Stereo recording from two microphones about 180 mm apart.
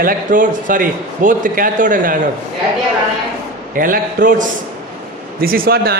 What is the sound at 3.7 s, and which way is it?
A man's voice, 50° right (ahead or behind).